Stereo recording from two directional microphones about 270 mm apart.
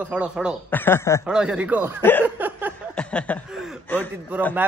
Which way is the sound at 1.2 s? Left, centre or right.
Centre.